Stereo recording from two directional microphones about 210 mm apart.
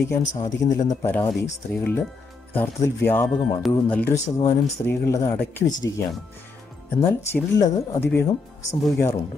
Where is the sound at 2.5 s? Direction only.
10° left (ahead or behind).